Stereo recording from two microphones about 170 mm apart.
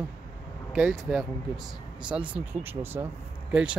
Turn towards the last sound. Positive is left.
turn(degrees=-5)  # may be behind; listen again after turning